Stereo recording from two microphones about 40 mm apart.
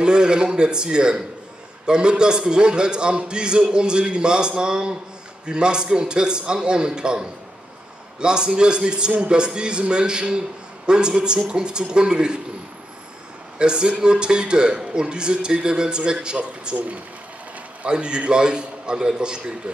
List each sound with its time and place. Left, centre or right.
0.0 s a man's voice: right
13.6 s a man's voice: right
16.7 s speech: right
17.8 s a man's voice: right